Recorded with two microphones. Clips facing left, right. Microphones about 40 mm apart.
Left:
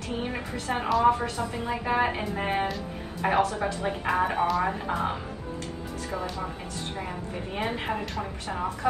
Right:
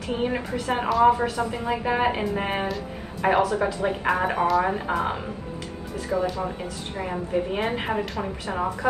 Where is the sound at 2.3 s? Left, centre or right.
Right.